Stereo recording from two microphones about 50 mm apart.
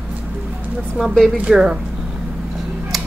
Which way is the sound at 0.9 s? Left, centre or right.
Centre.